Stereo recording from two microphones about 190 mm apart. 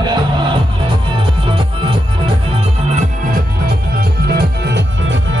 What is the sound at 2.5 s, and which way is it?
Music, 45° right (ahead or behind).